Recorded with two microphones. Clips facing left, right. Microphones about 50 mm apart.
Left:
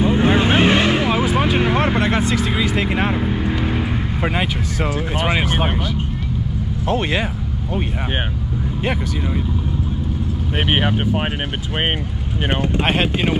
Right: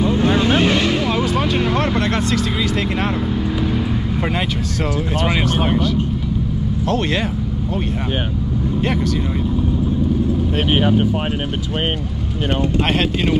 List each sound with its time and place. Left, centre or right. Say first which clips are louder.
0.0 s vehicle: even; left
5.2 s speech: even; centre
6.9 s speech: even; centre
10.7 s speech: right 2 dB; left
12.8 s speech: even; centre